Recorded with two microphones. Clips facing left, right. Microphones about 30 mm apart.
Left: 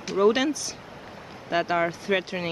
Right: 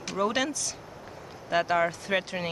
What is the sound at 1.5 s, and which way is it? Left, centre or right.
Speech, centre.